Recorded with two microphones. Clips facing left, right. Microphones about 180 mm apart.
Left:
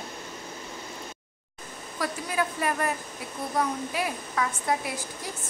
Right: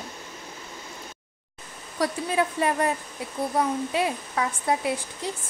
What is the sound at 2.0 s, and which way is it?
A woman's voice, 25° right (ahead or behind).